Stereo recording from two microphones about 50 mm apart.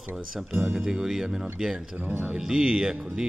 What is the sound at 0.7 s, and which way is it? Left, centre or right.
Speech, centre.